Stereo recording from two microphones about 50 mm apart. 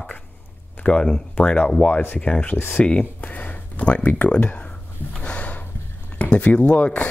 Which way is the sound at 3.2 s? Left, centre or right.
Left.